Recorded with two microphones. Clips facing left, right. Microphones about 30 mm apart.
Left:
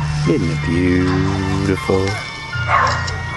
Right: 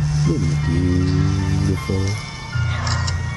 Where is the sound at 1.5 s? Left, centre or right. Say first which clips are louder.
Left 4 dB; left.